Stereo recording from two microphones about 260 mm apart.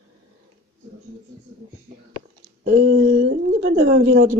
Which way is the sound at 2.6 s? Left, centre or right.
Right.